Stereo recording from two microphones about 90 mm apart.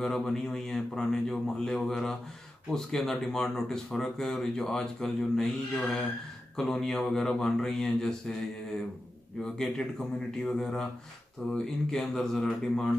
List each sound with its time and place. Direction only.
0.0 s speech: 5° left (ahead or behind)
9.4 s speech: 5° left (ahead or behind)